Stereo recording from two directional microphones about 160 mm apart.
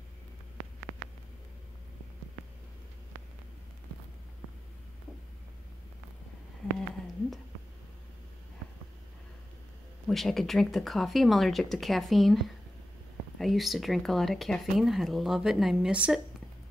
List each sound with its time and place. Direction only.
10.0 s speech: centre (ahead or behind)
13.4 s speech: centre (ahead or behind)